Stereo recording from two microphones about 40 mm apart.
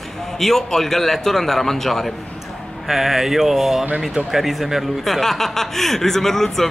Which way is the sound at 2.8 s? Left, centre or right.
Centre.